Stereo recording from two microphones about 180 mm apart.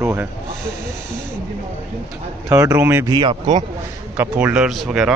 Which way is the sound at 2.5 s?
15° right (ahead or behind).